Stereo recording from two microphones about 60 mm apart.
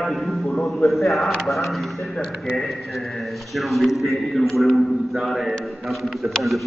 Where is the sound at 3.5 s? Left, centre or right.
Centre.